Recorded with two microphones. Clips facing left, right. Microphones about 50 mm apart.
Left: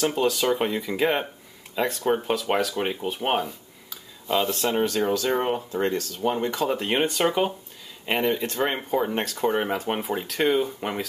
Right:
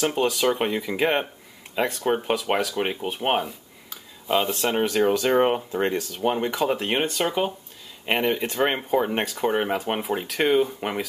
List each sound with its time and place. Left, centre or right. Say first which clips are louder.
0.0 s speech: right 1 dB; centre
2.0 s speech: even; right
3.1 s a sound: right 1 dB; centre
4.6 s speech: right 3 dB; right
6.3 s speech: right 1 dB; centre
6.9 s speech: left 1 dB; centre
8.0 s speech: right 1 dB; centre